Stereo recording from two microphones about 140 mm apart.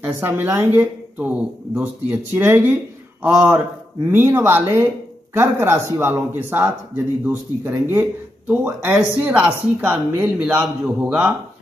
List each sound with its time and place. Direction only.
0.0 s a woman's voice: 15° right (ahead or behind)
7.8 s speech: 15° right (ahead or behind)